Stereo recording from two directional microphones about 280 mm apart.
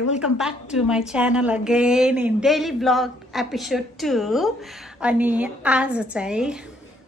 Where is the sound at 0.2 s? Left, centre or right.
Centre.